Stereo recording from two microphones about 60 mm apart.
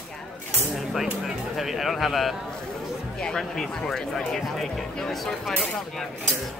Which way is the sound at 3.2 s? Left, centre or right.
Centre.